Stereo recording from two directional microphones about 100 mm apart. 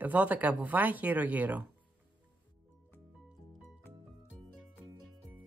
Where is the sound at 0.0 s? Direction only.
15° right (ahead or behind).